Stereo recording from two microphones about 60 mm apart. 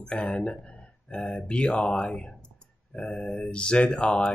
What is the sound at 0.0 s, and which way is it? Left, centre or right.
Speech, centre.